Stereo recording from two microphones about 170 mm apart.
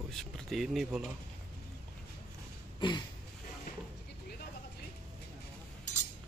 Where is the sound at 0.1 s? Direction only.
Centre (ahead or behind).